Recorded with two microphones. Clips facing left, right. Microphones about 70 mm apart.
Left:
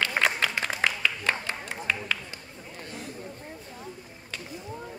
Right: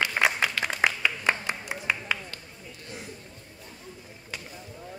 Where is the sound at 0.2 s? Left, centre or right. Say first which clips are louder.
Right 1 dB; centre.